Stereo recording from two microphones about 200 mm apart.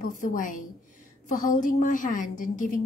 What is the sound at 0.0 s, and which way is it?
A woman's voice, 40° left (ahead or behind).